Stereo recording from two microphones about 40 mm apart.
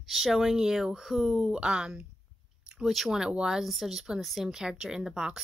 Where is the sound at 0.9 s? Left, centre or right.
Centre.